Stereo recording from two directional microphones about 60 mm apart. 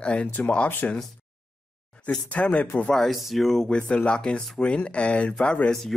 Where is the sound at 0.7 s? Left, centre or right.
Left.